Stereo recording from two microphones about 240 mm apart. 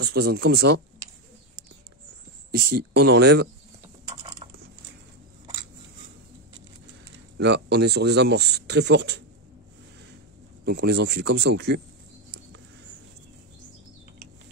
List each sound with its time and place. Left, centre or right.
0.0 s speech: right
2.5 s speech: right
4.4 s a sound: right
7.3 s speech: right
10.6 s speech: right